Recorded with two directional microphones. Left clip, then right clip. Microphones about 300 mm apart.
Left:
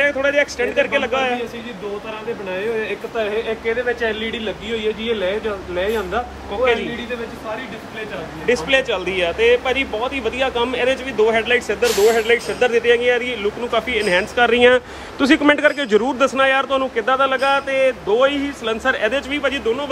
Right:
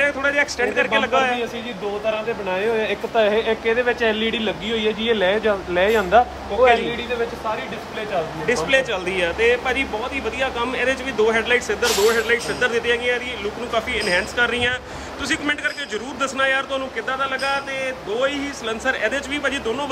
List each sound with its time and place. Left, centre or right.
0.0 s speech: centre
2.5 s speech: right
8.5 s speech: centre